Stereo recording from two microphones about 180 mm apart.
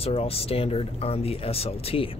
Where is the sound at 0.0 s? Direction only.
30° left (ahead or behind).